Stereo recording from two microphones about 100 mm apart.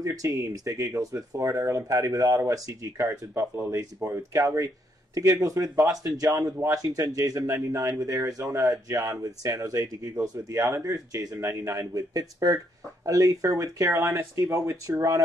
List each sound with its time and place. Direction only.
0.0 s speech: 35° right (ahead or behind)